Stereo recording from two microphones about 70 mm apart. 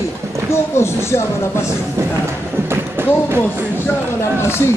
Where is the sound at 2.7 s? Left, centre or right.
Right.